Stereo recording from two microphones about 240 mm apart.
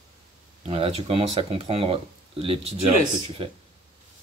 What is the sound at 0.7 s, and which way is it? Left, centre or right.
Speech, right.